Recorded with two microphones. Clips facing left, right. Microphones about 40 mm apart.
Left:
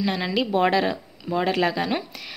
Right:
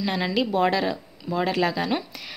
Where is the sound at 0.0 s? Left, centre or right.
Centre.